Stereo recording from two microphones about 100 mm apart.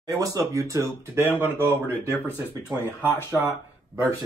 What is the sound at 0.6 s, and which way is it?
Speech, 30° right (ahead or behind).